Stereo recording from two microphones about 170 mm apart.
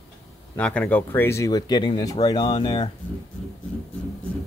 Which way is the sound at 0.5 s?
10° left (ahead or behind).